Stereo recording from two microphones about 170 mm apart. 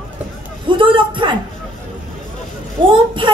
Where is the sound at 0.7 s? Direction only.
30° right (ahead or behind).